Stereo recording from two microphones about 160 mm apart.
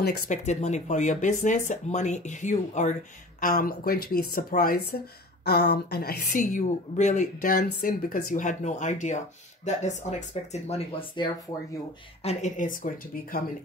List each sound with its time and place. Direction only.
0.3 s speech: 45° left (ahead or behind)
7.5 s speech: 60° left (ahead or behind); by 11.1 s 40° left (ahead or behind)
12.2 s speech: 45° left (ahead or behind)